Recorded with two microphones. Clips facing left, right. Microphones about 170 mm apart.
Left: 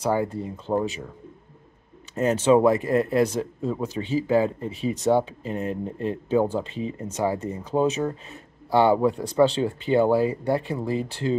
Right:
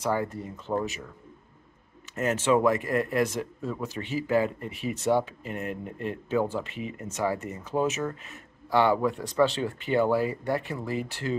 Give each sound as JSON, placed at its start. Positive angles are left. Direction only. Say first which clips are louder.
{"t": 0.0, "sound": "speech", "louder": "left 4 dB", "side_deg": 25}
{"t": 2.1, "sound": "speech", "louder": "left 5 dB", "side_deg": 35}